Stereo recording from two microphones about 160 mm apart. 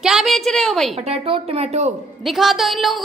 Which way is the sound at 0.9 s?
40° right (ahead or behind).